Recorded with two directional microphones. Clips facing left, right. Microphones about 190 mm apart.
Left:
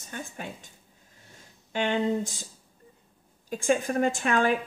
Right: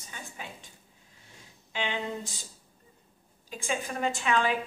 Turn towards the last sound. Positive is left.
turn(degrees=50)  # may be behind; listen again after turning